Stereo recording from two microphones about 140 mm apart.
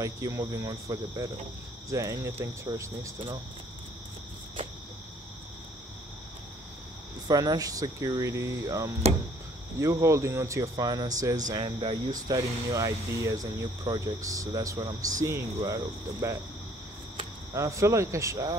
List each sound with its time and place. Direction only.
0.0 s speech: 25° right (ahead or behind)
7.2 s speech: 25° right (ahead or behind)
17.6 s speech: 20° right (ahead or behind)